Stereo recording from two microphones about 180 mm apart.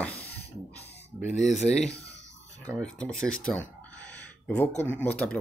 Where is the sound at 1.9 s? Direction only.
70° left (ahead or behind).